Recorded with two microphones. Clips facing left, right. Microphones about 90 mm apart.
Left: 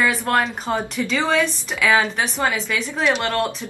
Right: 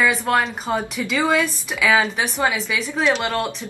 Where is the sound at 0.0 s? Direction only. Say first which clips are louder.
Right 1 dB; centre (ahead or behind).